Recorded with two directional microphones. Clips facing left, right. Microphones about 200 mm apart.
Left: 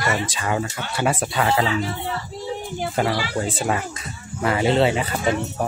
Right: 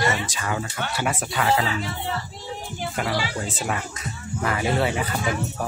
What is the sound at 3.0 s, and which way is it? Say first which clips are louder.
Speech: left 6 dB; 30° left (ahead or behind).